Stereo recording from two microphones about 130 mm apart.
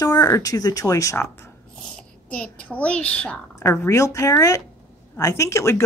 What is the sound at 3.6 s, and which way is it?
Speech, 20° left (ahead or behind).